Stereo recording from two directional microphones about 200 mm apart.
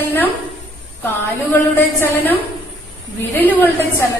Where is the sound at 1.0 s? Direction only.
10° left (ahead or behind).